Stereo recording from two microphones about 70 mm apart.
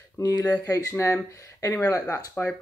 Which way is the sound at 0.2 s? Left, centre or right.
Left.